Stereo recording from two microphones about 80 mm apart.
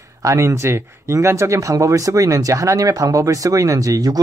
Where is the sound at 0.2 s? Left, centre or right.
Right.